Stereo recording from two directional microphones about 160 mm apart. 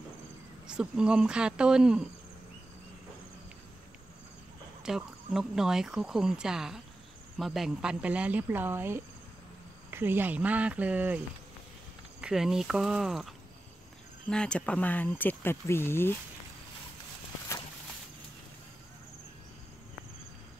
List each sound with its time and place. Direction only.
0.7 s speech: 5° right (ahead or behind)
4.8 s speech: 5° right (ahead or behind)
14.3 s speech: 5° left (ahead or behind)
17.5 s walk: 20° left (ahead or behind)